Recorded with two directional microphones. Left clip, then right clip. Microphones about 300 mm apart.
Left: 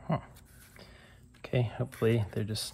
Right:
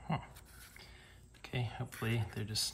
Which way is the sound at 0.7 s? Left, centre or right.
Centre.